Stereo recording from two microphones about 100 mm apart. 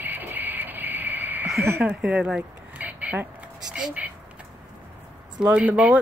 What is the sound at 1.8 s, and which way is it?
Speech, 10° right (ahead or behind).